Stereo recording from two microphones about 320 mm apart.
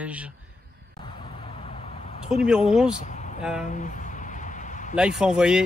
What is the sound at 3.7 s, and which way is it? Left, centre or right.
Speech, left.